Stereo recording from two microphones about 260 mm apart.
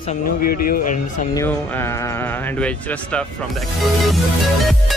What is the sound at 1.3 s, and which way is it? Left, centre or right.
Speech, centre.